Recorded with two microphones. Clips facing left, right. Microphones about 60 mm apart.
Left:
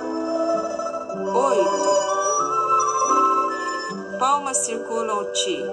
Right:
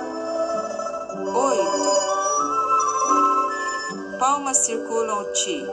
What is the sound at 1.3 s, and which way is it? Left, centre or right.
Music, centre.